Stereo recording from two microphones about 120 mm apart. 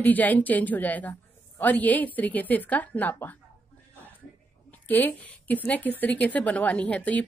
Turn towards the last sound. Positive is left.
turn(degrees=10)  # may be behind; listen again after turning